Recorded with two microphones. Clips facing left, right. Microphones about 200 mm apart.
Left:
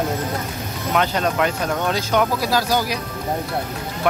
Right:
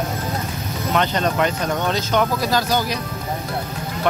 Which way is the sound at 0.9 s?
5° left (ahead or behind).